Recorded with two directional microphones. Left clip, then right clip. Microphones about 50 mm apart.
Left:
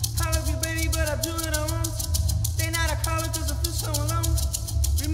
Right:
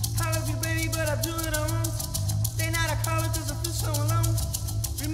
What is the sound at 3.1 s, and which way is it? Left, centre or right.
Music, left.